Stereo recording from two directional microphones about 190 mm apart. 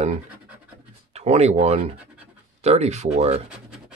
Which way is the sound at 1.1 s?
35° right (ahead or behind).